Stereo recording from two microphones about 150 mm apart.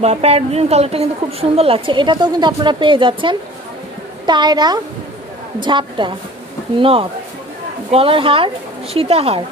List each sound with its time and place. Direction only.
0.0 s a woman's voice: 45° right (ahead or behind)